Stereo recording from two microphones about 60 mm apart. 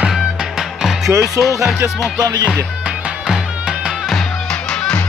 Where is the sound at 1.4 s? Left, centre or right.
Right.